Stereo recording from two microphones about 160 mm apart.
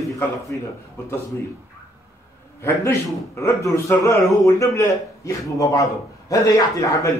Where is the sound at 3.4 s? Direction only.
20° left (ahead or behind).